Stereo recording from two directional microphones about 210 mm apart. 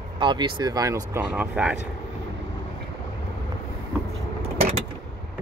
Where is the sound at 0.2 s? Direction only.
20° right (ahead or behind); by 1.8 s 5° right (ahead or behind).